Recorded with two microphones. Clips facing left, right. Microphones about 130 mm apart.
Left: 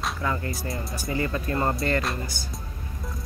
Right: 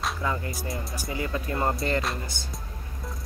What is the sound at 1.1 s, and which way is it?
Speech, 15° right (ahead or behind).